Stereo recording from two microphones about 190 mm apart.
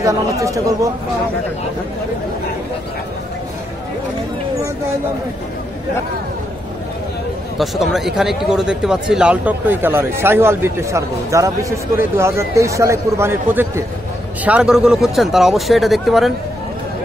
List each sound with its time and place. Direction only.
0.0 s a man's voice: 15° right (ahead or behind)
7.5 s a man's voice: centre (ahead or behind)